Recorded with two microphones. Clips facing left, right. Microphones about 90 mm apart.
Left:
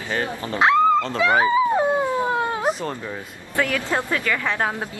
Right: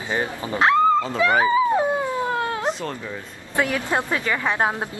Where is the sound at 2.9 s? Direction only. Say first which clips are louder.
Left 1 dB; 20° left (ahead or behind).